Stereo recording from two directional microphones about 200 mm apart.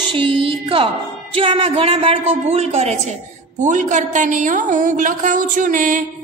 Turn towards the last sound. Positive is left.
turn(degrees=-40)  # may be behind; listen again after turning